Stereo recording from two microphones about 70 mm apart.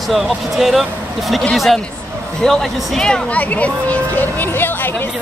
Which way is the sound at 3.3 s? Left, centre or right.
Left.